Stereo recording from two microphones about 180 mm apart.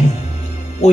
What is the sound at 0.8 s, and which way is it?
Speech, 40° left (ahead or behind).